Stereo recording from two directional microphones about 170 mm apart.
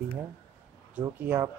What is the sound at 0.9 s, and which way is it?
Speech, 10° right (ahead or behind).